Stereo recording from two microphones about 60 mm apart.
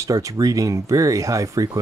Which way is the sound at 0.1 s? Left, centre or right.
Right.